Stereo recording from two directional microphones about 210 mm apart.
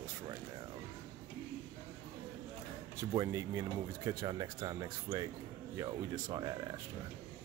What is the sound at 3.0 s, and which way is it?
Speech, 15° right (ahead or behind).